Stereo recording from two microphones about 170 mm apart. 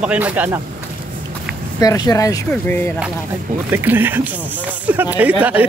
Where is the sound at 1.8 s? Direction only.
20° left (ahead or behind).